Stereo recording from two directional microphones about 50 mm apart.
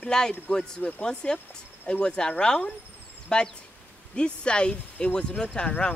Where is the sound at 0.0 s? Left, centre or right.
Centre.